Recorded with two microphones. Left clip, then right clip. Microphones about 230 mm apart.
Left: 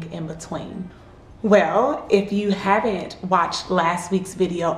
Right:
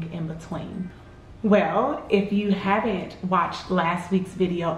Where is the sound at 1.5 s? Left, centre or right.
Left.